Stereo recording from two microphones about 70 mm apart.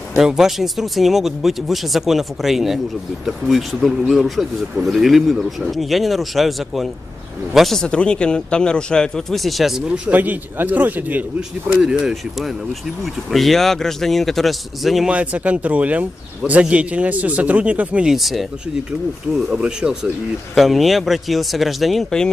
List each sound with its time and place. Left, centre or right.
0.2 s a man's voice: centre
9.8 s speech: right
11.8 s speech: centre
12.1 s speech: centre
15.0 s speech: centre
18.1 s speech: centre
18.9 s speech: centre
20.5 s speech: centre